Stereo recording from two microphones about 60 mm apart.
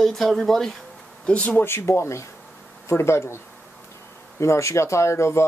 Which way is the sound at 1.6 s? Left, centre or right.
Left.